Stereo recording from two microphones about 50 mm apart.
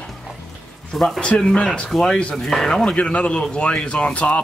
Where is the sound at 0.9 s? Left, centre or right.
Centre.